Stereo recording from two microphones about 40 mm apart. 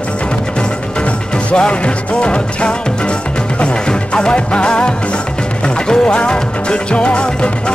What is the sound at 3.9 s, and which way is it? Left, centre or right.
Music, left.